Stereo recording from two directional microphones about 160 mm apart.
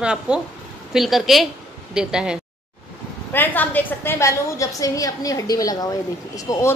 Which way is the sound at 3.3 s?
10° left (ahead or behind).